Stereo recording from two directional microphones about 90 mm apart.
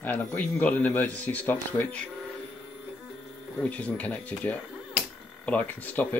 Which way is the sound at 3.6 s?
15° left (ahead or behind).